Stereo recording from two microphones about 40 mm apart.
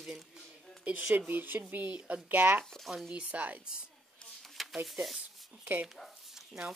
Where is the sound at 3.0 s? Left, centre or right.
Right.